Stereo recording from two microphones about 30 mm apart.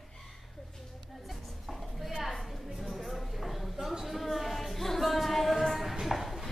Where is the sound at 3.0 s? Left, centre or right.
Centre.